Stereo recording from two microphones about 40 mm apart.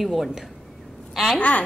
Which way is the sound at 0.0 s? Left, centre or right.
Centre.